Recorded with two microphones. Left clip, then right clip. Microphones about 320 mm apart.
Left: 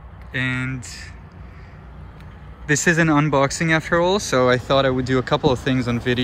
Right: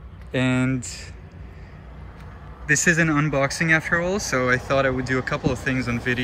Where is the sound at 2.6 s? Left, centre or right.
Centre.